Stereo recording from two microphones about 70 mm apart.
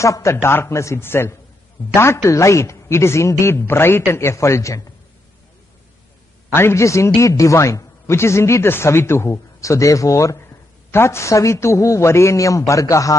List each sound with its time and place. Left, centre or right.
0.0 s a man's voice: left
2.2 s a man's voice: left
6.5 s a man's voice: left